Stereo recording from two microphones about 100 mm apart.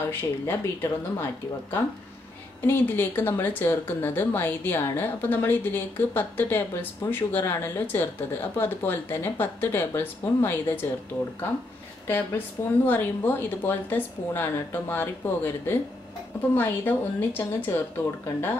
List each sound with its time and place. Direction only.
0.1 s speech: 20° left (ahead or behind)
12.8 s speech: 20° left (ahead or behind)